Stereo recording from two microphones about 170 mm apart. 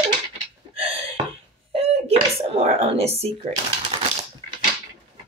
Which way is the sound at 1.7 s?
35° right (ahead or behind).